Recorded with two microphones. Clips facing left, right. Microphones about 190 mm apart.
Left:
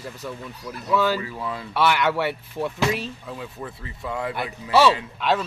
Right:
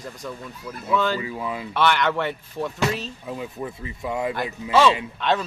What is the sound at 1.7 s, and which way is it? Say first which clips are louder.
Speech: even; 5° left (ahead or behind).